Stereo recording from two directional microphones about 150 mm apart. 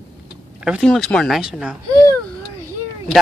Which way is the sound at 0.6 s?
Centre (ahead or behind).